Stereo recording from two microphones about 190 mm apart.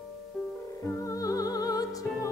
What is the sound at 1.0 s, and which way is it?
Music, 15° left (ahead or behind).